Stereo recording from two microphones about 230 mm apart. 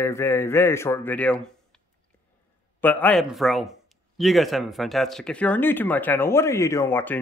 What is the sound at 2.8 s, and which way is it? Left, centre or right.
Speech, centre.